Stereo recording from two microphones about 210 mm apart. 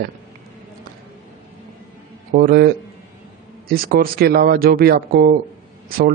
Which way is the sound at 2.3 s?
45° right (ahead or behind).